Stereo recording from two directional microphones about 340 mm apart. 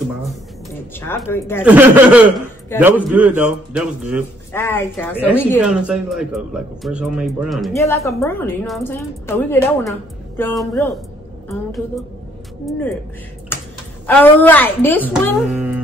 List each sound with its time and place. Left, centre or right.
0.9 s a woman's voice: centre
1.6 s a man's voice: centre
4.5 s a woman's voice: centre
14.0 s a man's voice: centre